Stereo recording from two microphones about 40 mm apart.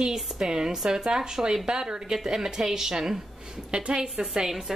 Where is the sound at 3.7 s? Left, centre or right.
Right.